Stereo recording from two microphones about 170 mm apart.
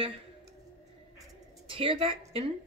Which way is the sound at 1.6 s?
30° right (ahead or behind).